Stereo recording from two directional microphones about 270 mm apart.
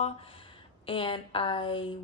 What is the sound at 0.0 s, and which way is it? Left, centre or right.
A woman's voice, centre.